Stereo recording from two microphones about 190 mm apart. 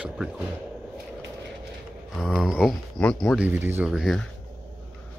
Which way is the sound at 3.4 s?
10° right (ahead or behind).